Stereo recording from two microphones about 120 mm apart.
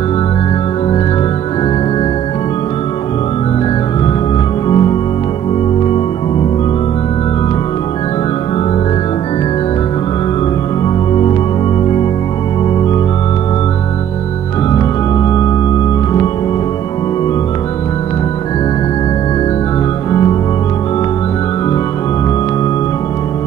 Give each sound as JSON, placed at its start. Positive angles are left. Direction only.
{"t": 4.6, "sound": "organ", "side_deg": 45}
{"t": 14.7, "sound": "organ", "side_deg": 35}
{"t": 20.1, "sound": "organ", "side_deg": 35}